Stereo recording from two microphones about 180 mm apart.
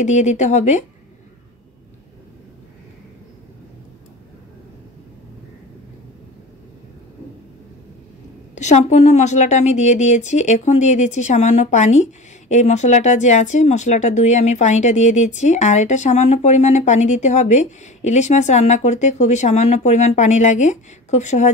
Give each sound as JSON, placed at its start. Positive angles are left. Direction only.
{"t": 0.0, "sound": "a woman's voice", "side_deg": 40}
{"t": 8.5, "sound": "a woman's voice", "side_deg": 40}